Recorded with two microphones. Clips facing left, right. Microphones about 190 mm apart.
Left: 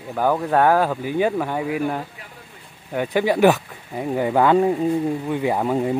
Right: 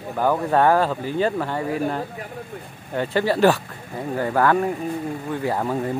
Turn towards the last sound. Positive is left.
turn(degrees=15)  # may be behind; listen again after turning